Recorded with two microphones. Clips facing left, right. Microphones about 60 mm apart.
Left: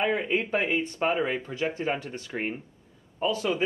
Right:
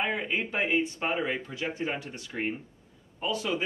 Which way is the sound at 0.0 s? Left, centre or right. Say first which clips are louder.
Left 4 dB; centre.